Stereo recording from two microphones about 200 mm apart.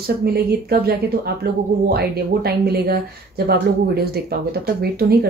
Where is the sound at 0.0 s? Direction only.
50° right (ahead or behind).